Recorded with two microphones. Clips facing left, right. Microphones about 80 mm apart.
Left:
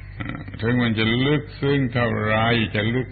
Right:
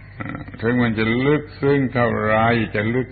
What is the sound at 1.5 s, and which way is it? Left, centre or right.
A man's voice, centre.